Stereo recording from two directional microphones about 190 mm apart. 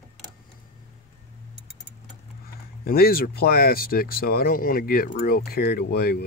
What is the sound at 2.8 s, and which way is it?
Speech, 50° left (ahead or behind).